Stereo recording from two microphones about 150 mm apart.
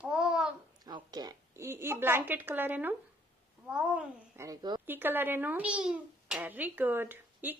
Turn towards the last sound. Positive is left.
turn(degrees=-15)  # may be behind; listen again after turning